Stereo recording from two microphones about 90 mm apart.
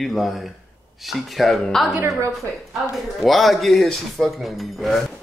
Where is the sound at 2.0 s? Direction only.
30° right (ahead or behind).